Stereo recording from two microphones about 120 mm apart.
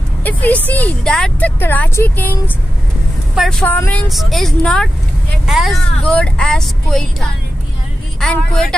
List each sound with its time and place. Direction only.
0.2 s a woman's voice: 15° left (ahead or behind)
1.6 s speech: 15° left (ahead or behind)
3.3 s speech: 5° left (ahead or behind)
3.7 s speech: 15° left (ahead or behind)
4.1 s a woman's voice: centre (ahead or behind)